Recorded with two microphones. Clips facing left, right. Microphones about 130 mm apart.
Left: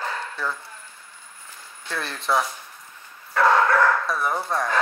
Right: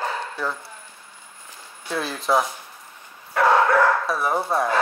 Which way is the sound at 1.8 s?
10° right (ahead or behind).